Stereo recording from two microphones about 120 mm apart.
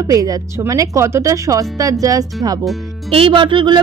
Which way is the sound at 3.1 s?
50° right (ahead or behind).